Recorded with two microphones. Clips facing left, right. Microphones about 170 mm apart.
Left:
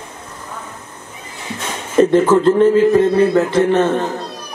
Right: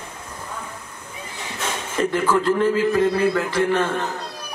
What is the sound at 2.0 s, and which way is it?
A man's voice, 25° left (ahead or behind).